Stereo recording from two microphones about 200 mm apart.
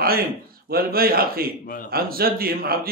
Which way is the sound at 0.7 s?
50° right (ahead or behind).